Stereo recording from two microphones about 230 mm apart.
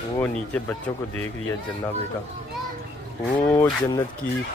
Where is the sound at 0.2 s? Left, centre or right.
Centre.